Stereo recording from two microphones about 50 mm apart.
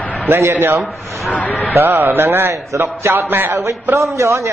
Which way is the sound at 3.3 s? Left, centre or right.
Right.